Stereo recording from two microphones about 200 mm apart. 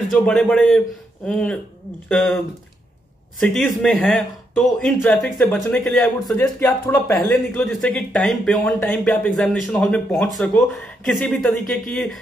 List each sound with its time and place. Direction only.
0.1 s speech: 5° left (ahead or behind)
3.3 s speech: 5° left (ahead or behind)
6.6 s speech: 15° left (ahead or behind)
7.2 s speech: centre (ahead or behind)